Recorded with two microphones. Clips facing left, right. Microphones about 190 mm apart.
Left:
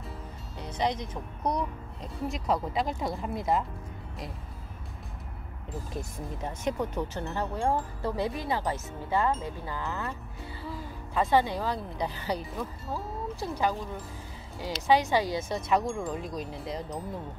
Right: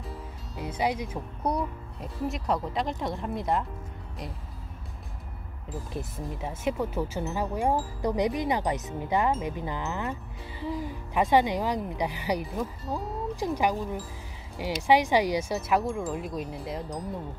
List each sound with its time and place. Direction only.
0.6 s speech: 10° right (ahead or behind)
5.9 s speech: centre (ahead or behind)